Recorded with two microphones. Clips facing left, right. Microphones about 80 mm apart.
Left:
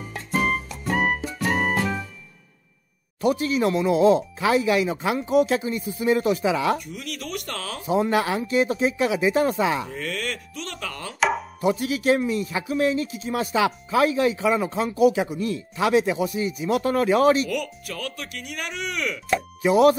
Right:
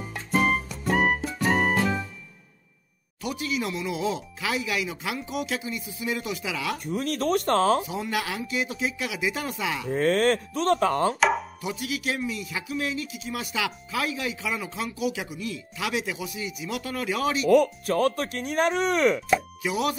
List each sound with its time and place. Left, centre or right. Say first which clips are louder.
0.3 s music: even; centre
3.2 s a man's voice: left 8 dB; left
6.9 s speech: right 8 dB; right
7.8 s a man's voice: left 8 dB; left
9.8 s speech: right 8 dB; right
11.1 s chopping: even; centre
11.6 s a man's voice: left 8 dB; left
17.5 s speech: right 10 dB; right
19.6 s a man's voice: left 10 dB; left